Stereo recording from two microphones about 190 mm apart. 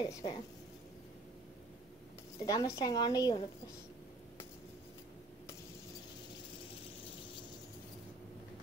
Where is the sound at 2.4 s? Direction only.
20° left (ahead or behind).